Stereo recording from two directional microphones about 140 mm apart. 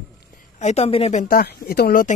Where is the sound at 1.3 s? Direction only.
90° left.